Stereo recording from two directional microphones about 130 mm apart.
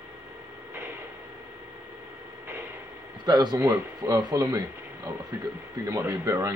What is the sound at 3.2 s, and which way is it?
Speech, 30° right (ahead or behind).